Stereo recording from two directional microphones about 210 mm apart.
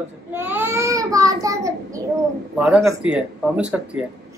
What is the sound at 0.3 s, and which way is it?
Child singing, 10° right (ahead or behind).